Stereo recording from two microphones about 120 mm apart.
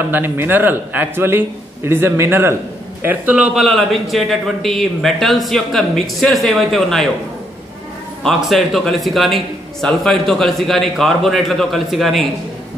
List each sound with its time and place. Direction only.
0.1 s a man's voice: 15° right (ahead or behind)
3.6 s a man's voice: centre (ahead or behind)
8.2 s a man's voice: centre (ahead or behind)